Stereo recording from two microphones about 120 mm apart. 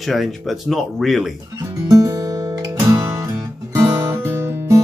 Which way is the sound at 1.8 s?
30° right (ahead or behind).